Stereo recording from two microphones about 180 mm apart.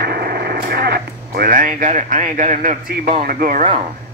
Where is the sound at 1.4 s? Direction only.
50° right (ahead or behind).